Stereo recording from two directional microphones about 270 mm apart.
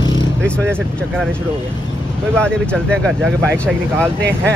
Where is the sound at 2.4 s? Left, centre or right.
Centre.